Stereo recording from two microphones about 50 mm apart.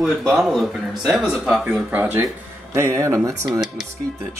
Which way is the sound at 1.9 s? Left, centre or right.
Right.